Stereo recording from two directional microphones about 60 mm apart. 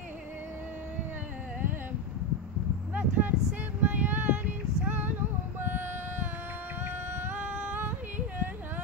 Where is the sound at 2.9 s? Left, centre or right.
Right.